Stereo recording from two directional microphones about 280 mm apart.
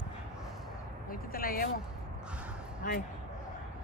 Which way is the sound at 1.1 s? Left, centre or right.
Left.